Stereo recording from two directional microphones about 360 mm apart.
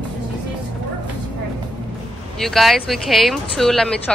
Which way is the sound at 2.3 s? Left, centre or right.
Centre.